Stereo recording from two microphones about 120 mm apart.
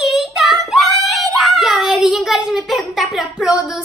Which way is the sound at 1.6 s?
5° right (ahead or behind).